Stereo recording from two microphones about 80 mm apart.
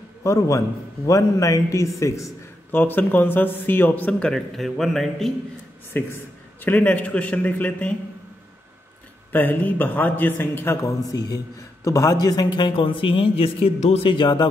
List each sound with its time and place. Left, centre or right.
0.2 s a man's voice: left
2.7 s a man's voice: left
4.1 s speech: centre
5.9 s a man's voice: left
9.3 s a man's voice: left
10.8 s a man's voice: left